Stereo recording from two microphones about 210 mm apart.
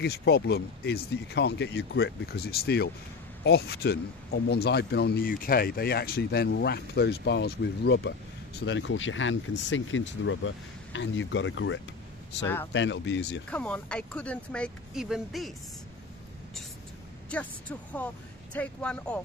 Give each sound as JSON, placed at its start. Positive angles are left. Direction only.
{"t": 0.0, "sound": "speech", "side_deg": 50}
{"t": 13.5, "sound": "speech", "side_deg": 5}
{"t": 17.3, "sound": "speech", "side_deg": 5}